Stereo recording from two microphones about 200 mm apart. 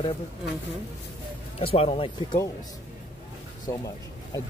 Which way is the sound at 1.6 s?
30° left (ahead or behind).